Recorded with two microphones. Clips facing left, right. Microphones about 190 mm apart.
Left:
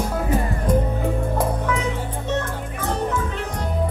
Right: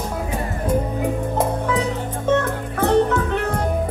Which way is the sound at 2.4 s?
65° right (ahead or behind).